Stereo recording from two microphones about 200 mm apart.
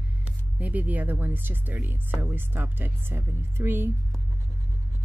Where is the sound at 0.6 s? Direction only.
10° right (ahead or behind).